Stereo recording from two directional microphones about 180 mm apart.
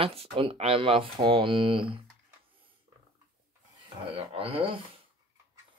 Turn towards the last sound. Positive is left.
turn(degrees=-30)  # may be behind; listen again after turning